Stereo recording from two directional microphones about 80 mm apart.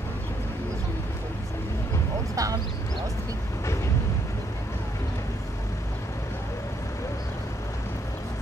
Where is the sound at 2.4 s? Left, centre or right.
Right.